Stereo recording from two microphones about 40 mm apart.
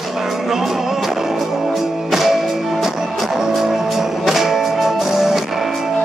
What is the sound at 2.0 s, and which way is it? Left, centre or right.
Music, centre.